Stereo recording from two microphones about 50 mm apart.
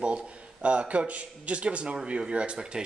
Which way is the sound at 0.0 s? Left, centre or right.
Right.